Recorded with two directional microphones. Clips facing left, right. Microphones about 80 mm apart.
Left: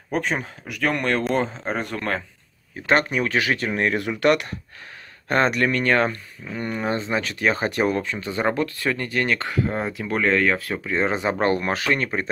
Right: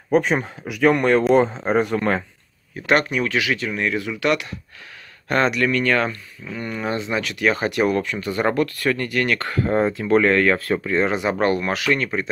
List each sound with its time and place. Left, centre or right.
0.1 s speech: centre
2.7 s speech: left
5.3 s speech: left
9.7 s speech: centre
9.9 s speech: centre
11.0 s speech: left